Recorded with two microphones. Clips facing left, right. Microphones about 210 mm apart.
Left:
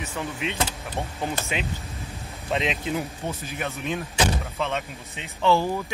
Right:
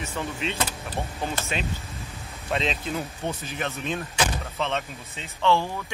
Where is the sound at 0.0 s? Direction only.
15° left (ahead or behind).